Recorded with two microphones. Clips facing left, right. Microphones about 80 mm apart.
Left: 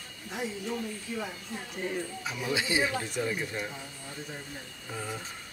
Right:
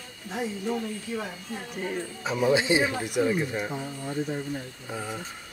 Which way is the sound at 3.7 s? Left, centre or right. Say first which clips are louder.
Right 9 dB; right.